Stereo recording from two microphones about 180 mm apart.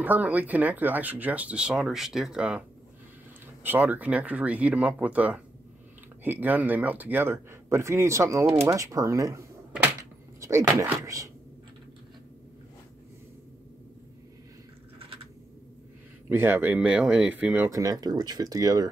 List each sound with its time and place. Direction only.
0.0 s speech: 10° right (ahead or behind)
3.6 s speech: 10° right (ahead or behind)
16.3 s speech: 10° right (ahead or behind)